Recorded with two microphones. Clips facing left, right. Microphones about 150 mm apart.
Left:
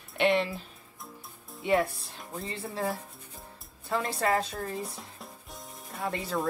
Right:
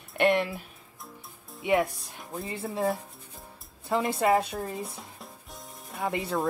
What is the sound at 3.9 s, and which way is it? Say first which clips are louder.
Speech: right 4 dB; 20° right (ahead or behind).